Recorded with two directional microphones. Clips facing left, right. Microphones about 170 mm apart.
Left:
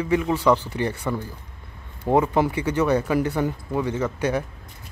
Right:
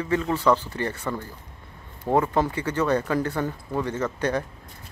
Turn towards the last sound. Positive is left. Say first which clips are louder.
# left 2 dB
turn(degrees=10)  # may be behind; listen again after turning